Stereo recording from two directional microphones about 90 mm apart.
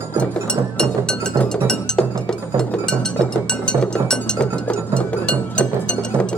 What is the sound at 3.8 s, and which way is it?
Music, 10° left (ahead or behind).